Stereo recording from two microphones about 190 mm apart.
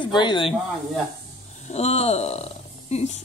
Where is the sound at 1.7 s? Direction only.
35° left (ahead or behind).